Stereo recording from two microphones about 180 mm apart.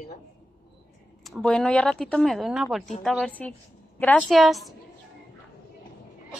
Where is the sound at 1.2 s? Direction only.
Centre (ahead or behind).